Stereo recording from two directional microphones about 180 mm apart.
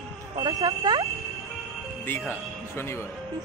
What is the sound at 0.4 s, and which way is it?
Speech, 20° right (ahead or behind).